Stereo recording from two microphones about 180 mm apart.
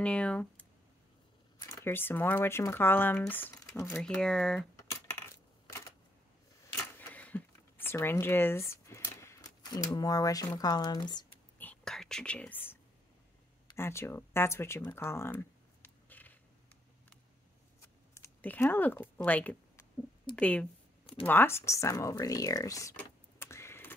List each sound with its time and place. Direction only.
0.0 s speech: 5° left (ahead or behind)
7.0 s a sound: 10° left (ahead or behind)
10.6 s speech: 20° left (ahead or behind)
11.5 s whispering: 10° left (ahead or behind)
13.7 s speech: 15° left (ahead or behind)
18.1 s speech: 10° left (ahead or behind)